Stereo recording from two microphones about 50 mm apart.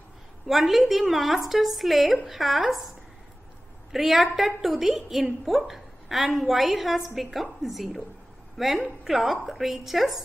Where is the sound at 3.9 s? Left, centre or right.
Centre.